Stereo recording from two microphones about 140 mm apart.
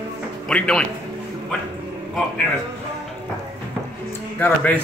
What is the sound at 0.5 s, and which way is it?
Speech, 5° left (ahead or behind).